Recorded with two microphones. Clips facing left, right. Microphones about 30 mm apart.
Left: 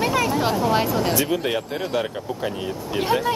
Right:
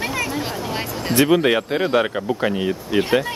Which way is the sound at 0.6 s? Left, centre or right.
Centre.